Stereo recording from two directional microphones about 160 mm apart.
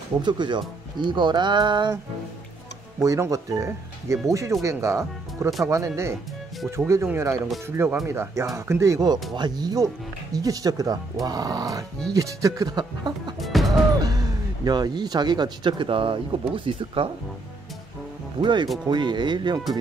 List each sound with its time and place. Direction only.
0.2 s speech: 30° right (ahead or behind)
3.0 s speech: 20° right (ahead or behind)
13.4 s music: centre (ahead or behind)
14.0 s speech: 25° right (ahead or behind)
18.4 s speech: 30° right (ahead or behind)